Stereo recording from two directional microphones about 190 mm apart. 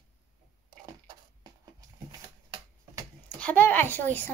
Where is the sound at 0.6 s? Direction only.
20° right (ahead or behind).